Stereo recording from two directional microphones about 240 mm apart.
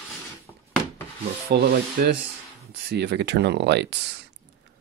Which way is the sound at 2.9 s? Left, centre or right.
Right.